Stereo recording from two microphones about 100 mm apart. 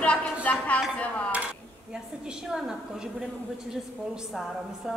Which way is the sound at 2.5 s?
5° right (ahead or behind).